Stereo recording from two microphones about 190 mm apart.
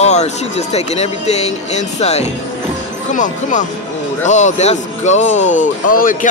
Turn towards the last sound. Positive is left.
turn(degrees=45)  # may be behind; listen again after turning